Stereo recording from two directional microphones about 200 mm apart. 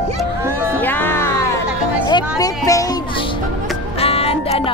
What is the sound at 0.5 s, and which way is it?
Music, 15° right (ahead or behind).